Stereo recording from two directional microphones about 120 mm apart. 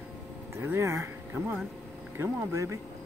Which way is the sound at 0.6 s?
20° right (ahead or behind).